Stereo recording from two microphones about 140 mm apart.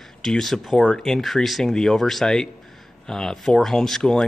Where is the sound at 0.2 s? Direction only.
5° left (ahead or behind).